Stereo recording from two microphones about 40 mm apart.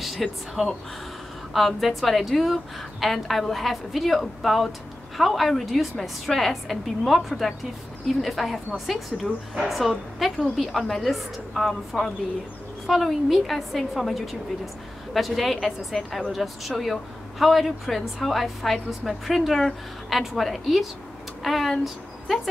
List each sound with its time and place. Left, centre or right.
0.0 s a woman's voice: centre
1.8 s a woman's voice: centre